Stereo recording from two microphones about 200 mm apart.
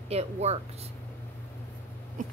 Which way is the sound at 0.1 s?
30° right (ahead or behind).